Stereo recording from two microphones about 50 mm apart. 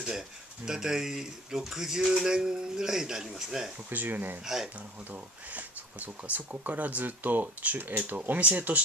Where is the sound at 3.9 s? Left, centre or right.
Right.